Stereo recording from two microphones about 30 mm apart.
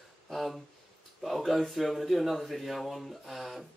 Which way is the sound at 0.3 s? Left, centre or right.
Centre.